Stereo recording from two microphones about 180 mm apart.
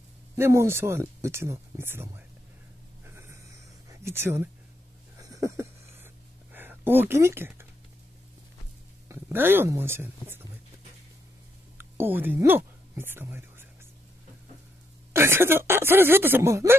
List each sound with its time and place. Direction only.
0.4 s speech: 15° right (ahead or behind)
3.1 s a sound: 15° right (ahead or behind)
6.5 s speech: 10° right (ahead or behind)
9.1 s speech: 10° right (ahead or behind)
12.0 s a woman's voice: 10° right (ahead or behind)
15.1 s speech: 15° right (ahead or behind)